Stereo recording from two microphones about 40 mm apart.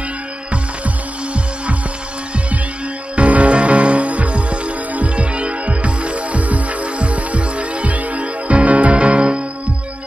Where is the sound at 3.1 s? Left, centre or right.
Right.